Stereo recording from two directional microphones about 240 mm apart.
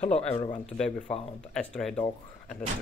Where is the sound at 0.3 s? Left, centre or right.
Left.